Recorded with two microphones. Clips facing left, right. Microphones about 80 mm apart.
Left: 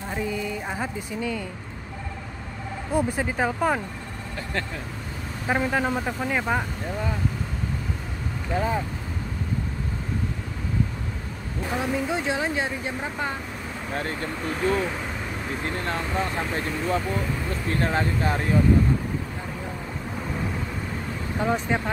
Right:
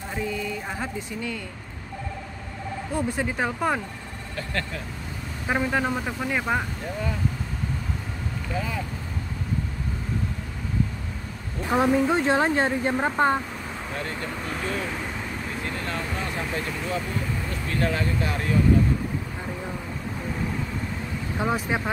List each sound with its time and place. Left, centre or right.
0.1 s speech: centre
3.2 s speech: centre
5.5 s speech: centre
8.5 s speech: left
11.7 s speech: right
15.6 s speech: left
21.4 s speech: centre